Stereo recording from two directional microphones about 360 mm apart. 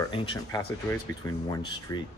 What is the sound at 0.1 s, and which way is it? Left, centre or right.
Speech, centre.